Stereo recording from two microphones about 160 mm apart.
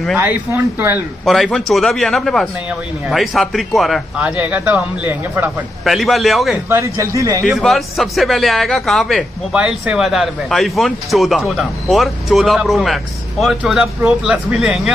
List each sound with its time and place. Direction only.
0.2 s speech: 10° right (ahead or behind)
1.2 s a man's voice: centre (ahead or behind)
5.9 s a man's voice: centre (ahead or behind)
6.7 s speech: 20° right (ahead or behind)
7.4 s a man's voice: centre (ahead or behind)